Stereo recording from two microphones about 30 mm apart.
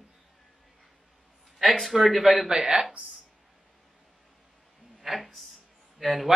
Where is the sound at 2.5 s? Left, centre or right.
Right.